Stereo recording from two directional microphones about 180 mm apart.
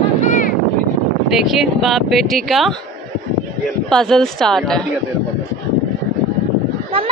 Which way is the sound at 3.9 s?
5° left (ahead or behind).